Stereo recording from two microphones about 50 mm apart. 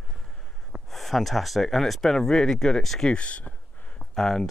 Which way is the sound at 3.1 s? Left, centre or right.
Left.